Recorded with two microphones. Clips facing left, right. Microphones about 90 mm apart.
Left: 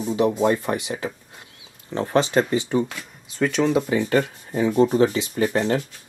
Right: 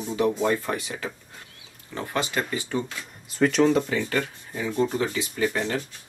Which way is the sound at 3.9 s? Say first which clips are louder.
Left 6 dB; 25° left (ahead or behind).